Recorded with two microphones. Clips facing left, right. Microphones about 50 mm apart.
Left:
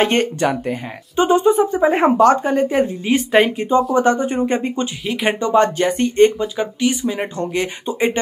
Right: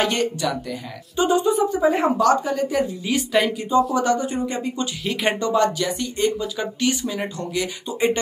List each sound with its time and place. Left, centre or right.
0.0 s speech: left
5.0 s speech: centre
5.4 s speech: left
6.5 s speech: left
7.3 s speech: left